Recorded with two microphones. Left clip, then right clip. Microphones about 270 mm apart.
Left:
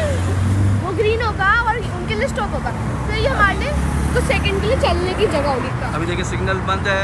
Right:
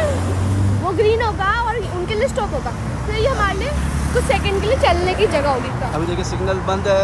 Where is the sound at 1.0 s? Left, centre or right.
Right.